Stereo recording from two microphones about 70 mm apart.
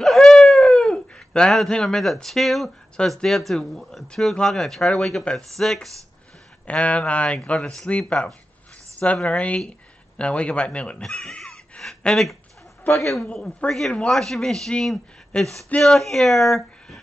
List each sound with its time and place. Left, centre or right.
0.0 s a sound: centre
3.2 s a man's voice: centre
6.6 s a man's voice: centre